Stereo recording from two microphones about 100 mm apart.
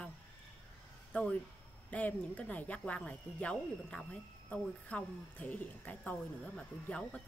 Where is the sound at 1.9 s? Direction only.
15° left (ahead or behind).